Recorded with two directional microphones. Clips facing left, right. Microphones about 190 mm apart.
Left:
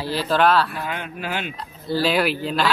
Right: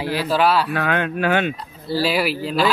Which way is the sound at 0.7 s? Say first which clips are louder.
Right 8 dB; 80° right.